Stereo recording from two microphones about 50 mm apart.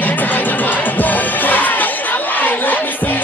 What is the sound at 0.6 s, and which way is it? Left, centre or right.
Music, left.